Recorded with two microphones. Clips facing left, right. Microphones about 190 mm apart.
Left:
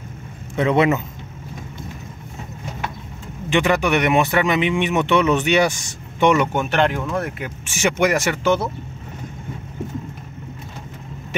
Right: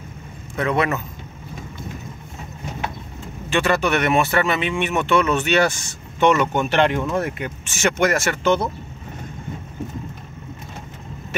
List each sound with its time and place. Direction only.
0.6 s a man's voice: 20° left (ahead or behind)
3.4 s speech: 15° left (ahead or behind)